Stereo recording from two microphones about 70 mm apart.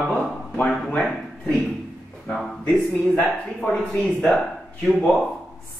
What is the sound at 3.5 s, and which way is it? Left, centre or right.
Speech, centre.